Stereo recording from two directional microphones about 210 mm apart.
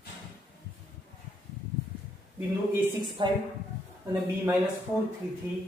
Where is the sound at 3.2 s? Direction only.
25° right (ahead or behind).